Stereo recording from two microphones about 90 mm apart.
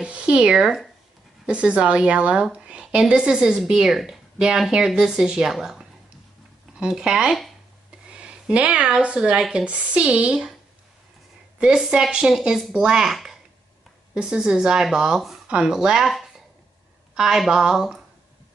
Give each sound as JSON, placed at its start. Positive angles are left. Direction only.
{"t": 0.0, "sound": "a sound", "side_deg": -10}
{"t": 1.4, "sound": "speech", "side_deg": -15}
{"t": 11.6, "sound": "speech", "side_deg": -10}